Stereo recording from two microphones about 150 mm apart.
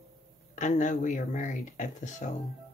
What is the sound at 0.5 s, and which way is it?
Speech, 55° left (ahead or behind).